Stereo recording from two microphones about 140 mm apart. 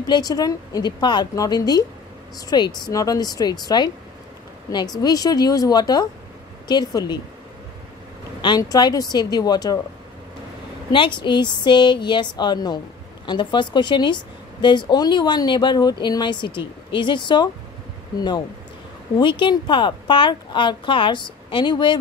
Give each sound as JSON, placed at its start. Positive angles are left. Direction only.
{"t": 0.0, "sound": "a woman's voice", "side_deg": 30}
{"t": 5.0, "sound": "a woman's voice", "side_deg": 25}
{"t": 8.4, "sound": "a woman's voice", "side_deg": 30}
{"t": 10.9, "sound": "a woman's voice", "side_deg": 35}
{"t": 19.1, "sound": "a woman's voice", "side_deg": 35}